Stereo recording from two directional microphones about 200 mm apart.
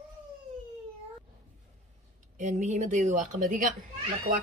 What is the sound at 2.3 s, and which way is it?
A woman's voice, 35° right (ahead or behind).